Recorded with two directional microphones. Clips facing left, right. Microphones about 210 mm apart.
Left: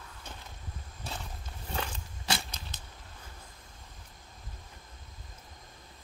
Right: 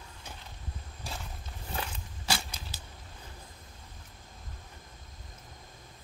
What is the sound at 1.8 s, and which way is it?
Biting, 5° right (ahead or behind).